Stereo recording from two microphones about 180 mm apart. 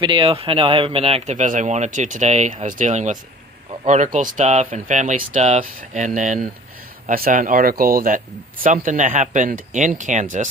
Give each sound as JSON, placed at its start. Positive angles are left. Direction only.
{"t": 0.0, "sound": "speech", "side_deg": -30}